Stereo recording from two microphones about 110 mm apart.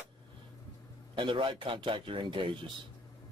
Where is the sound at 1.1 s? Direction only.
50° right (ahead or behind).